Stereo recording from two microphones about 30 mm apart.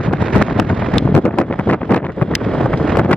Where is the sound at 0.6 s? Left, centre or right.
Left.